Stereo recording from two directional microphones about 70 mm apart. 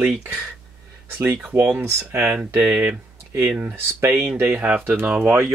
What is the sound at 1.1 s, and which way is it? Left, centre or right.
Speech, right.